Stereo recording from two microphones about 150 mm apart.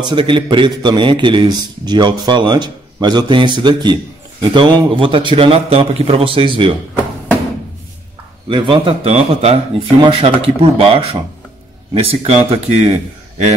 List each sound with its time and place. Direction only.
0.0 s a man's voice: 35° right (ahead or behind)
8.5 s a man's voice: 35° right (ahead or behind)